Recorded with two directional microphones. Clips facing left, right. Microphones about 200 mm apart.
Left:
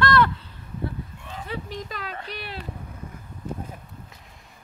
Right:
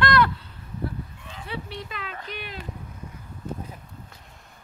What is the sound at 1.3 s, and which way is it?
Dog, 45° left (ahead or behind).